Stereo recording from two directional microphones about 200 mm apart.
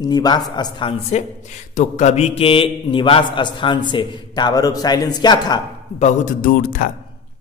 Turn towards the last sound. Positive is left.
turn(degrees=45)  # may be behind; listen again after turning